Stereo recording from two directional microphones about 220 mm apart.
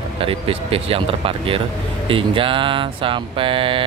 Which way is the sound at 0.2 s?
25° right (ahead or behind).